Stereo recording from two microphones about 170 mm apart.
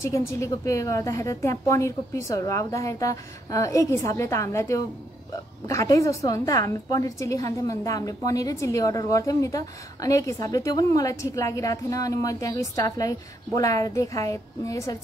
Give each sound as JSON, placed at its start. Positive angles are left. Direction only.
{"t": 0.0, "sound": "a woman's voice", "side_deg": 15}